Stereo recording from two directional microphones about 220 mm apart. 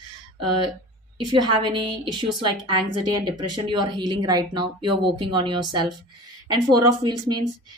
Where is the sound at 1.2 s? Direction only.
20° right (ahead or behind).